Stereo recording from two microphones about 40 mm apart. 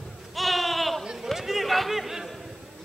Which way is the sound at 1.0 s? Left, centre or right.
Centre.